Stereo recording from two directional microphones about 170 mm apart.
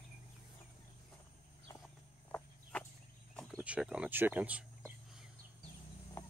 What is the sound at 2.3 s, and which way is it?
Chicken, 10° left (ahead or behind).